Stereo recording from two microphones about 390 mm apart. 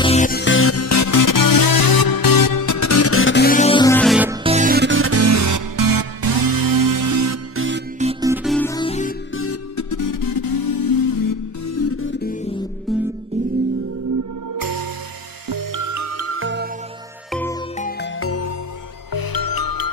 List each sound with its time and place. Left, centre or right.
0.0 s music: centre; by 7.8 s right
8.0 s music: centre
8.5 s music: centre
9.3 s music: left
12.9 s music: centre
15.4 s music: right
17.3 s music: centre
18.2 s music: left
19.1 s music: left